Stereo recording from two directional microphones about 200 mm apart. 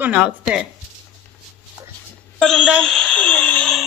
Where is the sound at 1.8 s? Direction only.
15° right (ahead or behind).